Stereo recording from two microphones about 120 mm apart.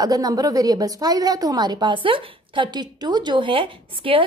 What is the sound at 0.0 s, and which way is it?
A woman's voice, 30° right (ahead or behind).